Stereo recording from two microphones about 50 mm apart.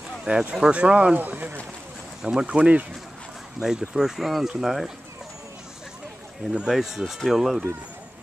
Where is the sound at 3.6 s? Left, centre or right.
Centre.